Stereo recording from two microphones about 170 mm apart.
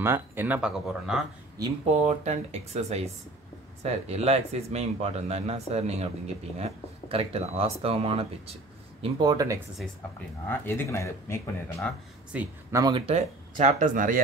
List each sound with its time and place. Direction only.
0.0 s speech: 15° right (ahead or behind)
1.9 s speech: 40° right (ahead or behind)
9.0 s speech: 25° right (ahead or behind)
10.6 s speech: 15° left (ahead or behind)
12.3 s speech: 5° right (ahead or behind)
12.7 s speech: 25° right (ahead or behind)
13.0 s speech: 40° right (ahead or behind)